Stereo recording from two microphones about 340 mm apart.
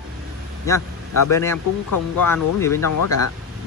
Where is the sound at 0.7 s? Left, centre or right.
Centre.